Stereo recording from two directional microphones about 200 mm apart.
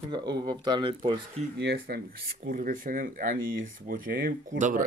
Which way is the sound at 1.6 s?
55° right (ahead or behind).